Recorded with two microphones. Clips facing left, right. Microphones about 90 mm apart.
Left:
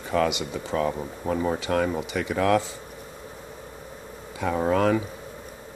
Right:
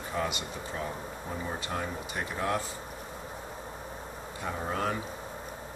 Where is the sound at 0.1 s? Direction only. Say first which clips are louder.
Left 9 dB; 90° left.